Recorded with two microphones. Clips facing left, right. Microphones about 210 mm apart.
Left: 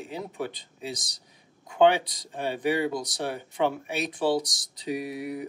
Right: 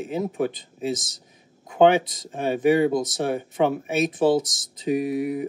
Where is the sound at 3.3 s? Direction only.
50° right (ahead or behind).